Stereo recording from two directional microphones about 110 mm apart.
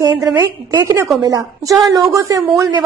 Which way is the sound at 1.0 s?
20° right (ahead or behind).